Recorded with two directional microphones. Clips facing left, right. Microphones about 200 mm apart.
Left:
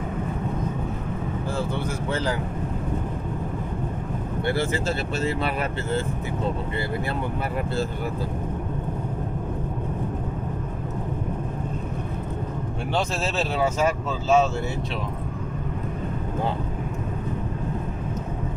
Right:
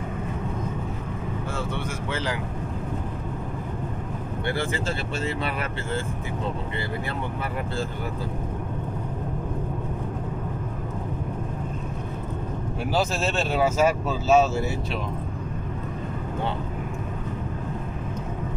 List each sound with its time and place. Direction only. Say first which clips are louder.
2.0 s speech: left 3 dB; 35° left (ahead or behind)
12.9 s speech: right 1 dB; centre (ahead or behind)